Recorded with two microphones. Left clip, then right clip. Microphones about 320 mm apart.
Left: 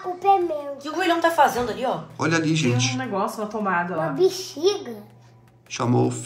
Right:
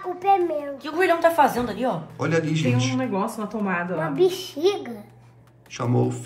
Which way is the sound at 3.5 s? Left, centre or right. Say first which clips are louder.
Left 4 dB; left.